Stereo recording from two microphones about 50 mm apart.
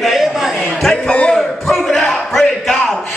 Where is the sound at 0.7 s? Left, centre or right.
Centre.